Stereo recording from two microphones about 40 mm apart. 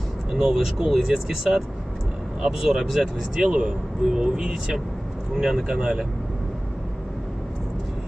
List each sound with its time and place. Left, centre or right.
0.3 s speech: centre